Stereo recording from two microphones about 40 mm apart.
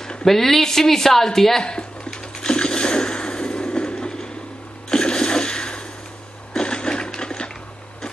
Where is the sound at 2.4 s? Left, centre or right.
Left.